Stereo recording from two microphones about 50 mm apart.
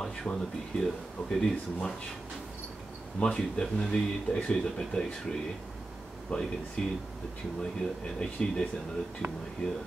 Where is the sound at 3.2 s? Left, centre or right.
Centre.